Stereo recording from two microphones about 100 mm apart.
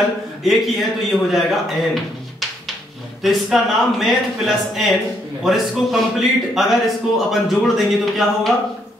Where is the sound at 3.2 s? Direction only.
Centre (ahead or behind).